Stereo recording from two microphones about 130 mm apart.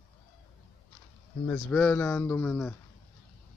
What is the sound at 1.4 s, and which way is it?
Speech, 10° left (ahead or behind).